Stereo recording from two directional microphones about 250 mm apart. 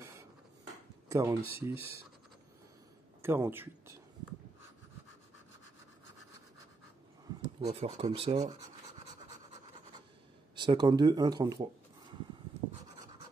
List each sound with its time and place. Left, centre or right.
1.0 s speech: centre
3.2 s speech: centre
7.6 s speech: right
10.6 s speech: centre